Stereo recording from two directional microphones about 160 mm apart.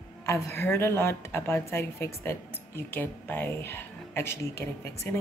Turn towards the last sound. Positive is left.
turn(degrees=15)  # may be behind; listen again after turning